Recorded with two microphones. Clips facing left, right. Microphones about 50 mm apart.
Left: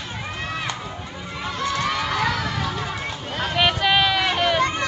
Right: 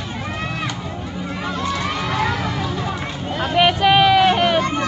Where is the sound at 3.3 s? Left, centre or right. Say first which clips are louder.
Right 5 dB; centre.